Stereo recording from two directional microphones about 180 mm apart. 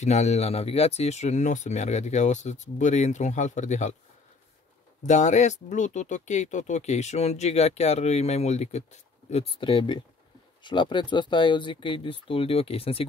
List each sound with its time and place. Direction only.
0.0 s speech: 40° left (ahead or behind)
5.0 s speech: 40° left (ahead or behind)